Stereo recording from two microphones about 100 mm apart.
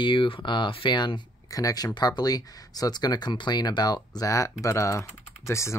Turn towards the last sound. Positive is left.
turn(degrees=30)  # may be behind; listen again after turning